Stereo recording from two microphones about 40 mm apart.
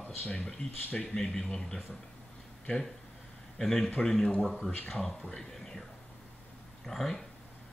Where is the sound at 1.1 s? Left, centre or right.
Centre.